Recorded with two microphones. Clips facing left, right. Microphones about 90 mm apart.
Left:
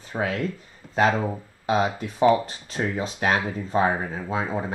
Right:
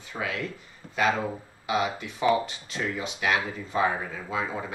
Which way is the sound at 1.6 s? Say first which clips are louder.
Left 4 dB; 40° left (ahead or behind).